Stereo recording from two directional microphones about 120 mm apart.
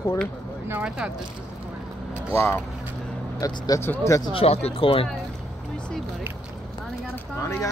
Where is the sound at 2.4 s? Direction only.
20° left (ahead or behind).